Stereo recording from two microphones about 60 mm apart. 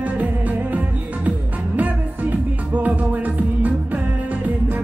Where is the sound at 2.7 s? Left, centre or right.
Right.